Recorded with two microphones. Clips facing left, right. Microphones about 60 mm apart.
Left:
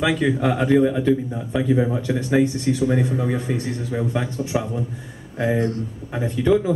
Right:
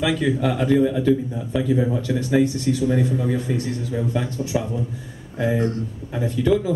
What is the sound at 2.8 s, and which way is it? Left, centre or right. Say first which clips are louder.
Speech: even; left.